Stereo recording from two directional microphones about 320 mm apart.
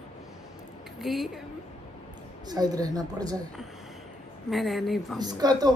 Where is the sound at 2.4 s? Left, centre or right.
Centre.